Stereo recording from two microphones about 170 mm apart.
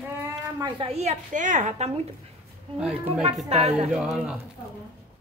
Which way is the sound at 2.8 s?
5° right (ahead or behind).